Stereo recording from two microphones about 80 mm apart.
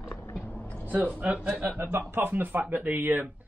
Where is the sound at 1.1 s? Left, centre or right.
Centre.